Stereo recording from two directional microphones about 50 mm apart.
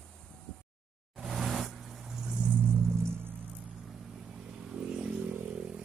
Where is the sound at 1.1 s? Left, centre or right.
Centre.